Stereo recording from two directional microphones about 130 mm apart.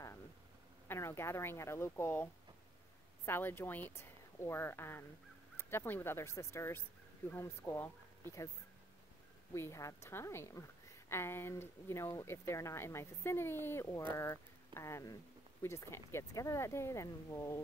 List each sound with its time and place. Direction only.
0.8 s speech: 20° left (ahead or behind)
3.3 s speech: 15° left (ahead or behind)
9.5 s speech: 20° left (ahead or behind)